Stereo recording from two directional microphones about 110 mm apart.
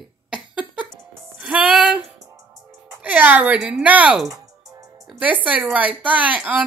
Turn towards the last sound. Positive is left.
turn(degrees=-15)  # may be behind; listen again after turning